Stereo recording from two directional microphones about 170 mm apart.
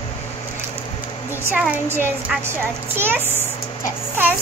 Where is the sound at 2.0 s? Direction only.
10° right (ahead or behind).